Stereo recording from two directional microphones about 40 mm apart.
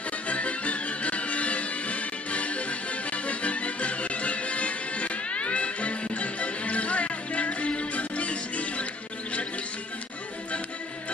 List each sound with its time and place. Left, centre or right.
0.3 s music: left